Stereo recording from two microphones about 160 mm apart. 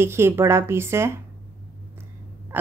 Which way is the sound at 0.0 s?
15° right (ahead or behind).